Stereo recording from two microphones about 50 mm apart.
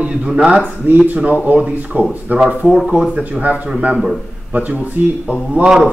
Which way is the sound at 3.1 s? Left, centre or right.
Right.